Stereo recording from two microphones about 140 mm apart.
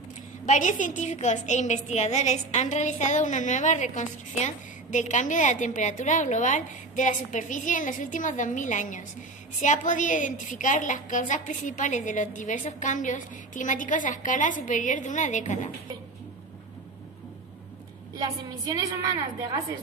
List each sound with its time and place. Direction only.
0.5 s a woman's voice: 65° left (ahead or behind)
18.7 s a woman's voice: 25° right (ahead or behind)